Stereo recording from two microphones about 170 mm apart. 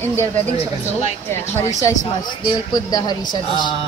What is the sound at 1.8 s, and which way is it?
A woman's voice, 20° left (ahead or behind).